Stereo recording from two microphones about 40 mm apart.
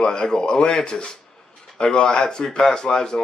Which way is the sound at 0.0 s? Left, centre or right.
Left.